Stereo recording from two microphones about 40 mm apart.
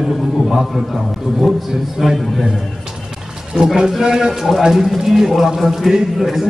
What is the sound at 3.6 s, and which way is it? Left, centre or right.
A man's voice, centre.